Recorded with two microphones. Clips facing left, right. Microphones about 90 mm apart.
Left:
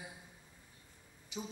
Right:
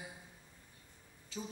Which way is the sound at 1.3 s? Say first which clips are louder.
Even; 20° left (ahead or behind).